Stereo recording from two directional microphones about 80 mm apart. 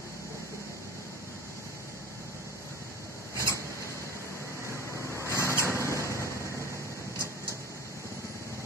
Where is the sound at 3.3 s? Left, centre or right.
Left.